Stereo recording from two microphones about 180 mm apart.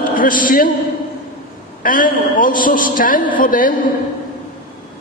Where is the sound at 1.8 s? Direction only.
50° left (ahead or behind).